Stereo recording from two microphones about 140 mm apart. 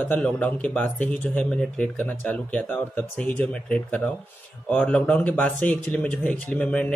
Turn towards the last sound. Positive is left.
turn(degrees=10)  # may be behind; listen again after turning